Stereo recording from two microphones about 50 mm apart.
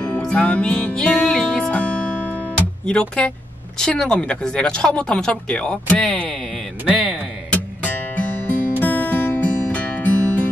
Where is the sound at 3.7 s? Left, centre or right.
Centre.